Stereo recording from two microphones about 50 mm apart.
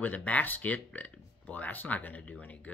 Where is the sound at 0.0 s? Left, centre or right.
Left.